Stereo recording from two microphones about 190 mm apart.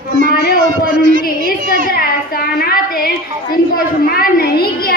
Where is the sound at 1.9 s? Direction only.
50° left (ahead or behind).